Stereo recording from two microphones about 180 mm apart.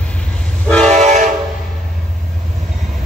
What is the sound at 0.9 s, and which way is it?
Train, 40° right (ahead or behind).